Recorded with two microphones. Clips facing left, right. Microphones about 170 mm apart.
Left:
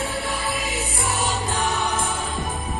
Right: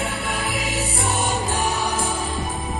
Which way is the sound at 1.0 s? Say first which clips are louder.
Right 1 dB; 20° right (ahead or behind).